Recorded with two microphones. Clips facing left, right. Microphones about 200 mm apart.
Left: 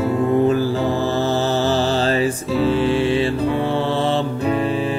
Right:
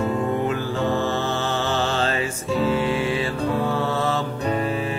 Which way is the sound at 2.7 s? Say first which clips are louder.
Left 7 dB; 30° left (ahead or behind).